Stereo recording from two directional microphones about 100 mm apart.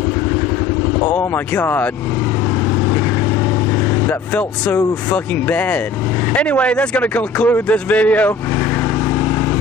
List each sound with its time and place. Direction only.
1.3 s speech: 20° left (ahead or behind)
4.1 s speech: 20° left (ahead or behind)